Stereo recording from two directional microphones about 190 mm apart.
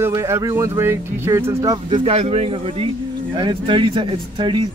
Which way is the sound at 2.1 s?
30° right (ahead or behind).